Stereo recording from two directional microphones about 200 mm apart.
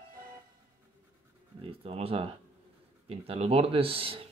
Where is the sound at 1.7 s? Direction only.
30° right (ahead or behind).